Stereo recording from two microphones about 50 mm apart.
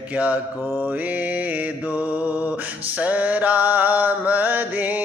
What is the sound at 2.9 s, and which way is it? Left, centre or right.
Mantra, right.